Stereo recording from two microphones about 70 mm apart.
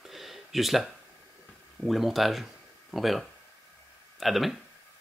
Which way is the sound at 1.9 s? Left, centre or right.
Centre.